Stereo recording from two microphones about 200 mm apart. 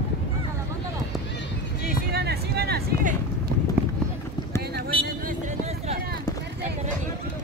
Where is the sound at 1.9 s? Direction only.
55° right (ahead or behind).